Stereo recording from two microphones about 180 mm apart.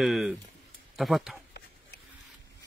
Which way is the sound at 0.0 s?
Centre (ahead or behind).